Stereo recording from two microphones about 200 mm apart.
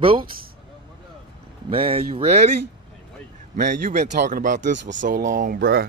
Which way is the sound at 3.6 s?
40° right (ahead or behind).